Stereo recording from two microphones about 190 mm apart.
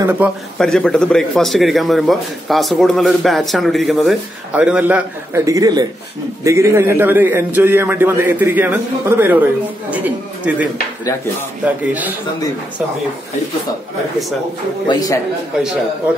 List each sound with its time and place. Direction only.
0.6 s a man's voice: 5° left (ahead or behind)
14.9 s a man's voice: 20° left (ahead or behind)